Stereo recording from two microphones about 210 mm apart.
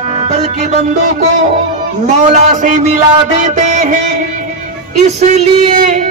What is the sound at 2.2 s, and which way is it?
Music, 35° right (ahead or behind).